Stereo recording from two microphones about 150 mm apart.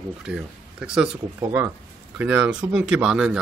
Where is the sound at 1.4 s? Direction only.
15° right (ahead or behind).